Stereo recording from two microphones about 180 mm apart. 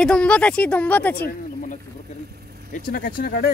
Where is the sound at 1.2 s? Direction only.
50° left (ahead or behind).